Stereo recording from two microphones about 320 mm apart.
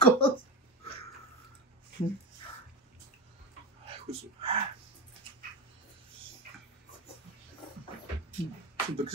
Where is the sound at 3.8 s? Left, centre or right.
Centre.